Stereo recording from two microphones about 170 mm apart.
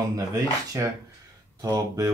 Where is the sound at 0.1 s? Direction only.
20° right (ahead or behind).